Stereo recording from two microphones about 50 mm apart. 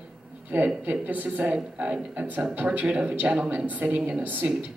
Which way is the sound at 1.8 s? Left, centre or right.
Right.